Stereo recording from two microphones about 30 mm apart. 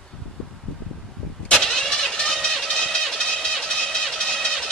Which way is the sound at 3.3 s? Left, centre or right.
Left.